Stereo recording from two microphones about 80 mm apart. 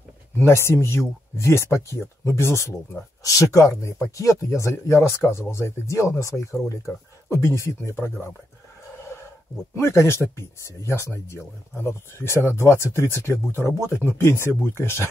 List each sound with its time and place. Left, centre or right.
0.4 s speech: left
9.8 s speech: left